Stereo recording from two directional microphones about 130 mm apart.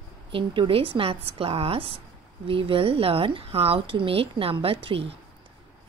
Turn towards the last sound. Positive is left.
turn(degrees=-45)  # may be behind; listen again after turning